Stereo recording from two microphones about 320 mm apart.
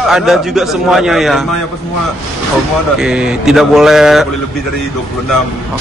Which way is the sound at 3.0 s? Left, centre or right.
Centre.